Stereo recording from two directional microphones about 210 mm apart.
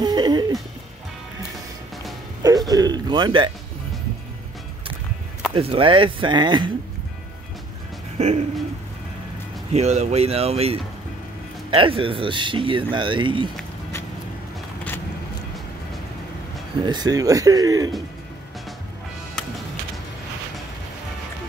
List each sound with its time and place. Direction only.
0.0 s music: 20° right (ahead or behind)
2.4 s a sound: 20° right (ahead or behind)
5.5 s speech: 25° right (ahead or behind)
8.2 s speech: 30° right (ahead or behind)
9.7 s speech: 30° right (ahead or behind)
16.8 s speech: 20° right (ahead or behind)